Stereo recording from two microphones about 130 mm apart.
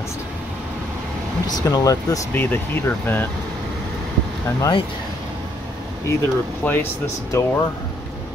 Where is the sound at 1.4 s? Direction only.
30° left (ahead or behind).